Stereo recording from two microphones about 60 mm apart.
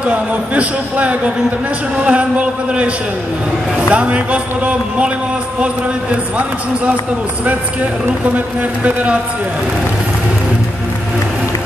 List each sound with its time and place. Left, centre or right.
0.0 s a man's voice: right
3.9 s a man's voice: right
8.8 s a man's voice: right